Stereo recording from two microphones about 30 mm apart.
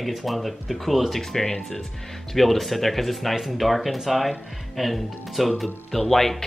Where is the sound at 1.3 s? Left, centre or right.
Centre.